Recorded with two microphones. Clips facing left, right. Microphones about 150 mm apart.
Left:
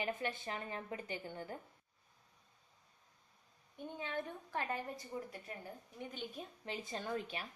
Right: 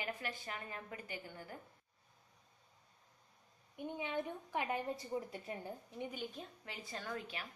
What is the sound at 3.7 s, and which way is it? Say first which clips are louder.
A woman's voice: right 2 dB; 15° right (ahead or behind).